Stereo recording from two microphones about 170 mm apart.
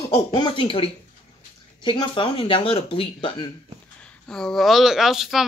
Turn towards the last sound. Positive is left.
turn(degrees=0)  # may be behind; listen again after turning